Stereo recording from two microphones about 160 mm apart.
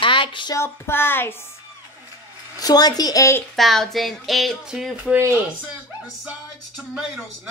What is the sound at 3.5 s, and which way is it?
Speech, centre (ahead or behind).